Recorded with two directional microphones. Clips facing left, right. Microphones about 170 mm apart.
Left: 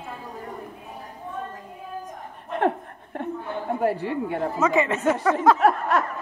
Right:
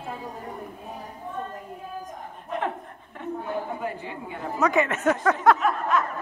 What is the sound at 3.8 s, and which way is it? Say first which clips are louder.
Speech: left 9 dB; 70° left (ahead or behind).